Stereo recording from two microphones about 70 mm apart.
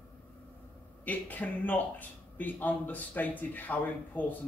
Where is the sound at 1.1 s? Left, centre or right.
Left.